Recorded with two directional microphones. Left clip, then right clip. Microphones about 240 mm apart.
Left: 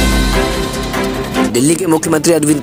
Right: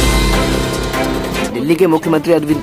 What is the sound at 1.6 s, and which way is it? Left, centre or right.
Speech, centre.